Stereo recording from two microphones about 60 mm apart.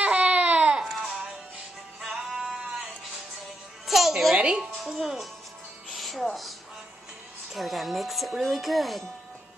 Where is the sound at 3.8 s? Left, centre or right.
Centre.